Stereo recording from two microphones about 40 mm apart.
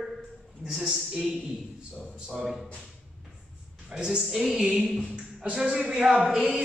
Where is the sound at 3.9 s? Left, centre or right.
Centre.